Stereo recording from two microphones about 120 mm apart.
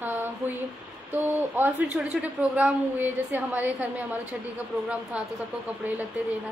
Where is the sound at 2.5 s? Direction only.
15° right (ahead or behind).